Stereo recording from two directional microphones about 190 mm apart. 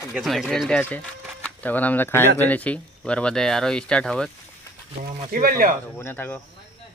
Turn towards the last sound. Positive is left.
turn(degrees=10)  # may be behind; listen again after turning